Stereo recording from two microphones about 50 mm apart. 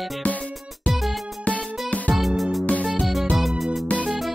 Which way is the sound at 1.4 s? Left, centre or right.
Left.